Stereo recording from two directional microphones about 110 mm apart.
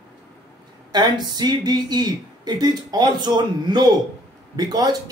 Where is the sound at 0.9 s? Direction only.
40° right (ahead or behind).